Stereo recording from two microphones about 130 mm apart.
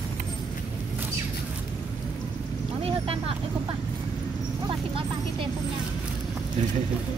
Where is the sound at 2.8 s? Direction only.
45° right (ahead or behind).